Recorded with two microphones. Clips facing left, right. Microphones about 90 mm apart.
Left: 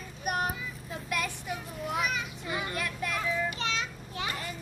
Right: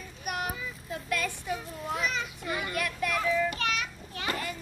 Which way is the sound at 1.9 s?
10° left (ahead or behind).